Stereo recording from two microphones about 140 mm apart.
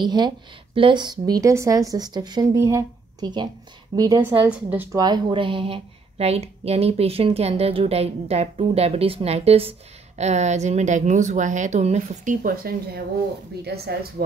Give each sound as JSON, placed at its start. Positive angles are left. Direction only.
{"t": 0.0, "sound": "speech", "side_deg": -30}
{"t": 4.5, "sound": "a woman's voice", "side_deg": -10}
{"t": 4.9, "sound": "a woman's voice", "side_deg": -30}
{"t": 12.7, "sound": "speech", "side_deg": -90}